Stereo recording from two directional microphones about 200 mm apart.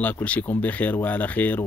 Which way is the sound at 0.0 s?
10° left (ahead or behind).